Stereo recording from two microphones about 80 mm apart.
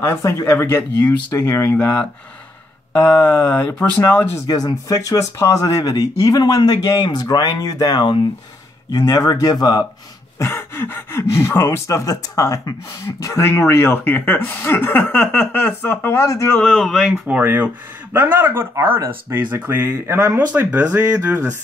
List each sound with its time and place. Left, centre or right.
0.0 s speech: left
1.8 s speech: centre
4.5 s speech: left
10.4 s speech: left
11.9 s speech: left
13.3 s speech: left
16.6 s speech: centre
17.3 s speech: centre
20.5 s speech: right